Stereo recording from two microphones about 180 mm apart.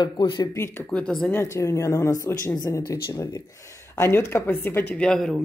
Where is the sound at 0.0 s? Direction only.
25° left (ahead or behind); by 1.4 s 5° left (ahead or behind).